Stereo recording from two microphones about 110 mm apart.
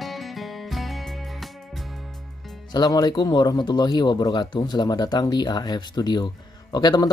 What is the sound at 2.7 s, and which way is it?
Speech, 40° left (ahead or behind).